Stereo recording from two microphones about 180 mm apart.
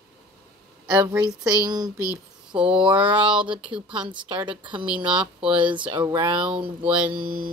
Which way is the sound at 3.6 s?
5° right (ahead or behind).